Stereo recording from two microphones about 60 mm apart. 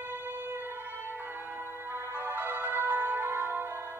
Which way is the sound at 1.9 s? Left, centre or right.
Right.